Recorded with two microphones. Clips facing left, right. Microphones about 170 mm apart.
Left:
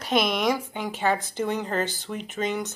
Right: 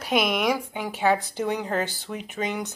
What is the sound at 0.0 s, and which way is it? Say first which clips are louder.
Speech: even; 10° right (ahead or behind).